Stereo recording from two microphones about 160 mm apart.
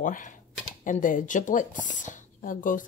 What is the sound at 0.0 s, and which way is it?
Speech, 55° left (ahead or behind).